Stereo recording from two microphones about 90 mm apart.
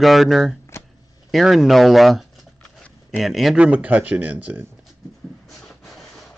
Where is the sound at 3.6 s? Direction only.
15° right (ahead or behind).